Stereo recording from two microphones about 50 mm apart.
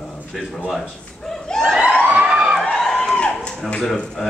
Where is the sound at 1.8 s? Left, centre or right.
Right.